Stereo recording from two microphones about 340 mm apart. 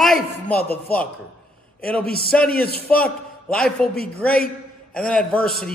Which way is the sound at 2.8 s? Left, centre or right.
Centre.